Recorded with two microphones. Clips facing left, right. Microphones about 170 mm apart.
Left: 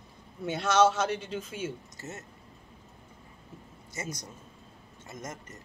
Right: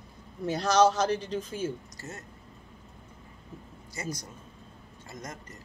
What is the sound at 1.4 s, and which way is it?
Speech, 30° right (ahead or behind).